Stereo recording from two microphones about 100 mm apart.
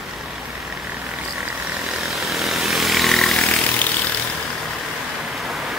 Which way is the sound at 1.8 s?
Centre (ahead or behind).